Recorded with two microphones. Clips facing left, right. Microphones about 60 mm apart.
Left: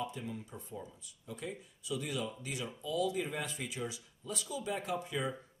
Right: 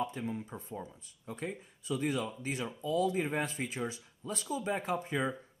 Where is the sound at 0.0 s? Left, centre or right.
Right.